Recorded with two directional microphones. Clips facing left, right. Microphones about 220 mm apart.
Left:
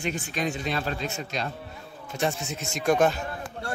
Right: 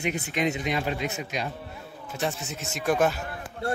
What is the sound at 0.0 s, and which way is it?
Speech, 20° right (ahead or behind).